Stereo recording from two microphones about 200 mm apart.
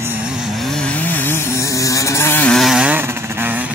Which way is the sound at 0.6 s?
5° left (ahead or behind).